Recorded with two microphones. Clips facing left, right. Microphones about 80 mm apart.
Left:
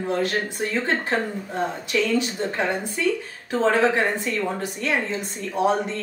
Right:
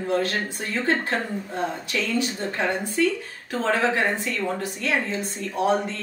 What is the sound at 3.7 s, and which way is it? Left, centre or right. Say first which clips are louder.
Speech: left 2 dB; left.